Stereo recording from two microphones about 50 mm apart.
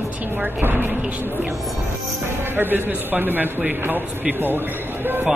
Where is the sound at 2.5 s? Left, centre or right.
Right.